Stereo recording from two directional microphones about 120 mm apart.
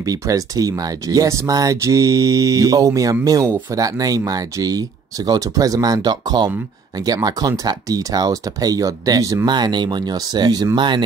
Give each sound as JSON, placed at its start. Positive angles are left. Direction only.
{"t": 0.0, "sound": "speech", "side_deg": -30}